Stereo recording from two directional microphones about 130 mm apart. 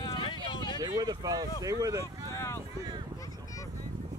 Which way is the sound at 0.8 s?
30° right (ahead or behind).